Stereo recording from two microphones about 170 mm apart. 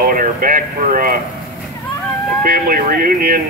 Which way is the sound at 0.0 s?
55° right (ahead or behind).